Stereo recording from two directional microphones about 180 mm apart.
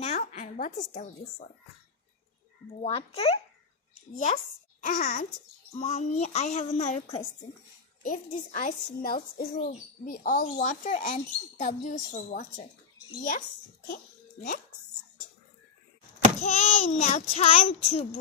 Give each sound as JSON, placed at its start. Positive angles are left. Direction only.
{"t": 0.0, "sound": "a sound", "side_deg": 40}
{"t": 2.8, "sound": "a child's voice", "side_deg": 35}
{"t": 4.8, "sound": "speech", "side_deg": 50}
{"t": 5.8, "sound": "a child's voice", "side_deg": 35}
{"t": 13.8, "sound": "a child's voice", "side_deg": 50}
{"t": 16.4, "sound": "a child's voice", "side_deg": 35}